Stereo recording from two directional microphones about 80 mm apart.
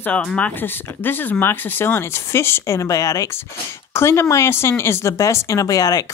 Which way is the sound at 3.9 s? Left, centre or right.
Left.